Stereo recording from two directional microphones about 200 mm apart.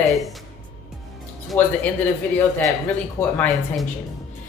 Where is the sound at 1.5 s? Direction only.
10° left (ahead or behind).